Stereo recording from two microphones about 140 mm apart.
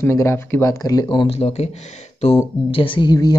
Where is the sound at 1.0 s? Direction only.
40° left (ahead or behind).